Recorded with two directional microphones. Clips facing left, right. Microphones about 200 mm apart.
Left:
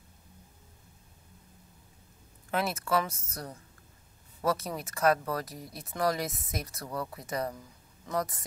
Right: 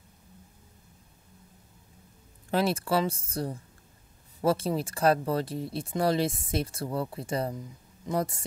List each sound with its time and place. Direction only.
2.5 s speech: 30° right (ahead or behind)